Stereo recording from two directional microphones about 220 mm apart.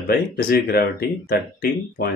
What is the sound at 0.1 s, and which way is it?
A man's voice, 45° left (ahead or behind).